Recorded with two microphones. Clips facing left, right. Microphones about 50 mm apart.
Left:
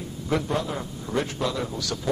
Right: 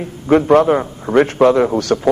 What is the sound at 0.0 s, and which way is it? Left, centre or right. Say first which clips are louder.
A man's voice: right 13 dB; right.